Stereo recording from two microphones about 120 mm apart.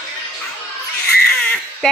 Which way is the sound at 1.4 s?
10° left (ahead or behind).